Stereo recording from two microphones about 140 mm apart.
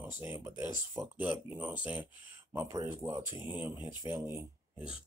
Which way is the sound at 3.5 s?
10° right (ahead or behind).